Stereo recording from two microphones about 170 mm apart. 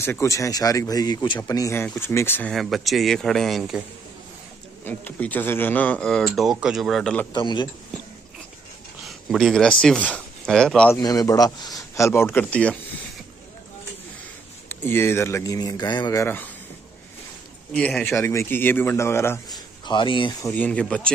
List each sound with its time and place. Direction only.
0.0 s speech: 15° left (ahead or behind)
2.5 s speech: centre (ahead or behind)
4.8 s speech: 10° left (ahead or behind)
7.3 s speech: 25° left (ahead or behind)
9.0 s speech: centre (ahead or behind)
11.0 s a man's voice: 20° left (ahead or behind)
14.7 s a man's voice: 15° left (ahead or behind)
17.7 s a man's voice: 5° left (ahead or behind)
19.9 s speech: 30° left (ahead or behind)
20.4 s a man's voice: 10° left (ahead or behind)